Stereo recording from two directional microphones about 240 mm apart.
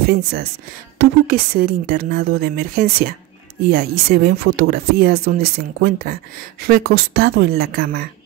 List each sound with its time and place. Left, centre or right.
0.0 s speech: right